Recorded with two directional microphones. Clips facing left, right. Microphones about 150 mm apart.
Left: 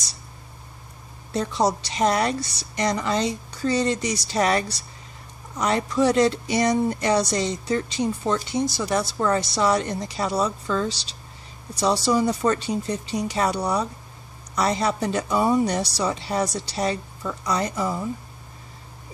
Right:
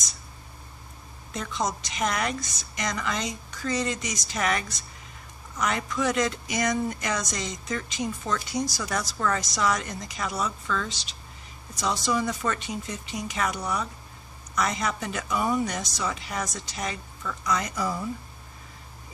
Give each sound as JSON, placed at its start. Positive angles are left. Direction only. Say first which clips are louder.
{"t": 1.3, "sound": "speech", "louder": "left 7 dB", "side_deg": 35}